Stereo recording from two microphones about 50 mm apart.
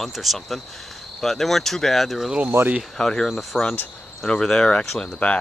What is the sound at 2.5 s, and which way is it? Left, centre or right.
Speech, right.